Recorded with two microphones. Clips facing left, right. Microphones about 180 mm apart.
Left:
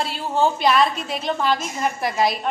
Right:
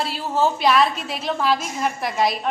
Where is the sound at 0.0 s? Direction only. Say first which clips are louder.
Even; centre (ahead or behind).